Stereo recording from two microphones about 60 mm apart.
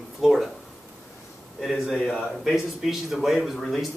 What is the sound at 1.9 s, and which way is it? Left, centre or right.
Speech, centre.